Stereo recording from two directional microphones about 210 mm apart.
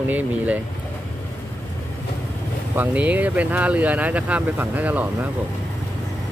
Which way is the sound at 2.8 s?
5° right (ahead or behind).